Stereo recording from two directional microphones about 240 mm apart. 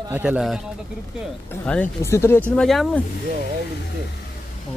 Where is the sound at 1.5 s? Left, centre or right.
Centre.